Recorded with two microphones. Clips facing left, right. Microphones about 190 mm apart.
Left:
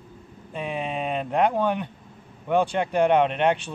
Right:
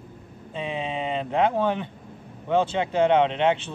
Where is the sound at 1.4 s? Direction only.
15° left (ahead or behind).